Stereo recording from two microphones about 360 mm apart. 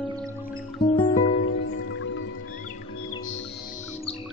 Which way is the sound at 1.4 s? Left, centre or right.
Left.